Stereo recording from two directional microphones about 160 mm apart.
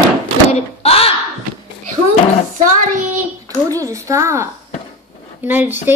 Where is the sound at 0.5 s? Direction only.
40° left (ahead or behind).